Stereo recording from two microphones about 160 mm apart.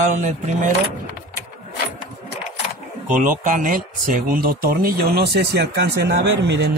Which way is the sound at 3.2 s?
55° right (ahead or behind).